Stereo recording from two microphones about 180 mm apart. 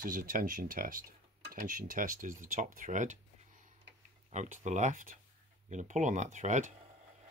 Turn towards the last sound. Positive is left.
turn(degrees=-45)  # may be behind; listen again after turning